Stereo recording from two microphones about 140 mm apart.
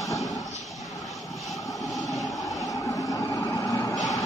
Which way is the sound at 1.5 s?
Centre (ahead or behind).